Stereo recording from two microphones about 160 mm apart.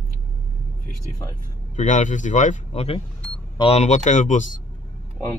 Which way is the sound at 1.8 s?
50° left (ahead or behind).